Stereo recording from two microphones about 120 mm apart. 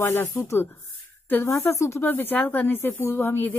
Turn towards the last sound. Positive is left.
turn(degrees=20)  # may be behind; listen again after turning